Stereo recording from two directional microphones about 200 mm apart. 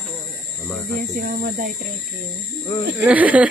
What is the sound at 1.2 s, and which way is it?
Speech, 45° right (ahead or behind).